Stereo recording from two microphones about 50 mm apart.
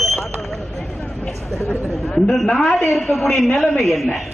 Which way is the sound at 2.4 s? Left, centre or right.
Centre.